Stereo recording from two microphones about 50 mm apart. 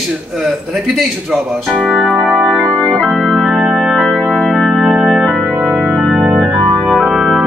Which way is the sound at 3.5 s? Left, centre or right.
Centre.